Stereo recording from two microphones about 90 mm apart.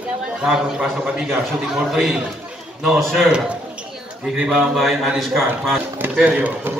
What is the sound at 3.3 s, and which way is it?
A man's voice, 10° right (ahead or behind).